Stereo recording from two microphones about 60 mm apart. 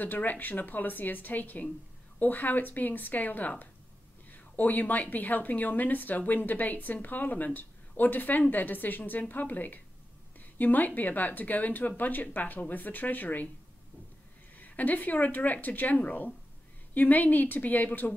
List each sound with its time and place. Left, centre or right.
0.0 s a woman's voice: left
14.5 s a woman's voice: left